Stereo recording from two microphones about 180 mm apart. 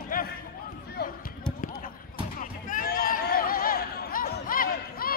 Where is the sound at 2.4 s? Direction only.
50° left (ahead or behind).